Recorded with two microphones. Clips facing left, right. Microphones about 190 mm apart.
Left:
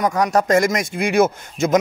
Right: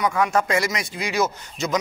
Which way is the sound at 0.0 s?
40° left (ahead or behind).